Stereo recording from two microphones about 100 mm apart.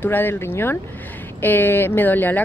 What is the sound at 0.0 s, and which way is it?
Speech, 20° left (ahead or behind).